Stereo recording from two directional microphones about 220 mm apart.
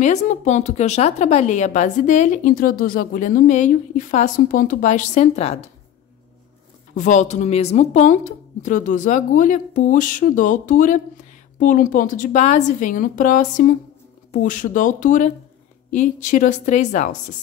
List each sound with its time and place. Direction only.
0.0 s speech: 30° left (ahead or behind)
7.0 s speech: 35° left (ahead or behind)